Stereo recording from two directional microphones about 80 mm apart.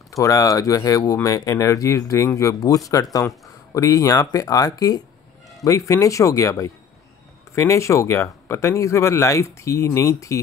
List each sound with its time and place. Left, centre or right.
0.1 s speech: left